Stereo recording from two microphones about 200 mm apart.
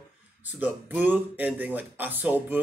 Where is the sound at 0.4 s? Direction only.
10° right (ahead or behind).